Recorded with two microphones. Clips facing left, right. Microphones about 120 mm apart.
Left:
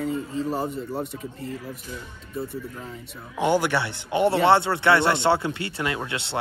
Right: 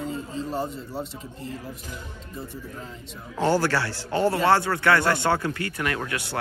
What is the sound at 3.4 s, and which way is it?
A man's voice, 20° left (ahead or behind).